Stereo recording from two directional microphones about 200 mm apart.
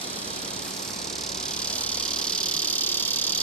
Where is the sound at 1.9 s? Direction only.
5° left (ahead or behind).